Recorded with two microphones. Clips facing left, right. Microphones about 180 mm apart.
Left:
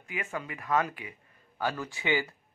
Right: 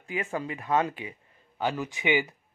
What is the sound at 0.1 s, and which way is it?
A man's voice, 30° right (ahead or behind).